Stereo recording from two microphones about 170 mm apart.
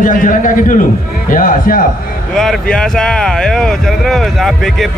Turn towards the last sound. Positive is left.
turn(degrees=0)  # may be behind; listen again after turning